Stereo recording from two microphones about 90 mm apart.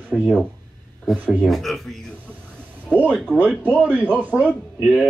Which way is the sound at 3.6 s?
15° right (ahead or behind).